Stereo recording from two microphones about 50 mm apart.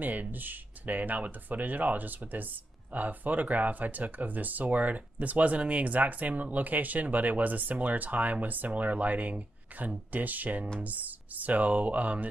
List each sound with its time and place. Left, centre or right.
0.0 s speech: right